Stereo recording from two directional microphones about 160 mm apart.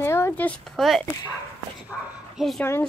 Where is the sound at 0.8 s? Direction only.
Centre (ahead or behind).